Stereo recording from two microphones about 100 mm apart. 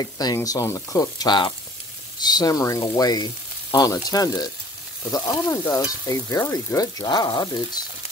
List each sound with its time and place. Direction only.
0.0 s stir: 40° left (ahead or behind)